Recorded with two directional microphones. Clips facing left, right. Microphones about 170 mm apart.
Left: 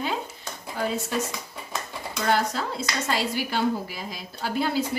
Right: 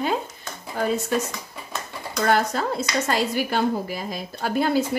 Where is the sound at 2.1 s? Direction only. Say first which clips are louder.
Right 3 dB; 50° right (ahead or behind).